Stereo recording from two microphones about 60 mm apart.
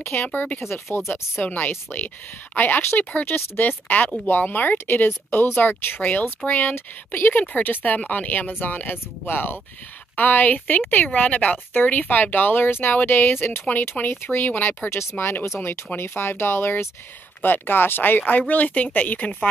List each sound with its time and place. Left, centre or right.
0.0 s speech: left
0.3 s speech: left
0.7 s speech: left
1.5 s speech: left
3.0 s speech: left